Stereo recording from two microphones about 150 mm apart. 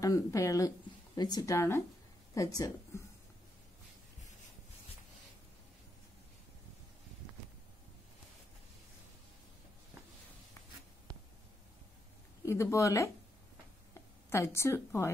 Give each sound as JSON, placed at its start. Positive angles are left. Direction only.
{"t": 0.0, "sound": "speech", "side_deg": 20}
{"t": 12.4, "sound": "speech", "side_deg": 20}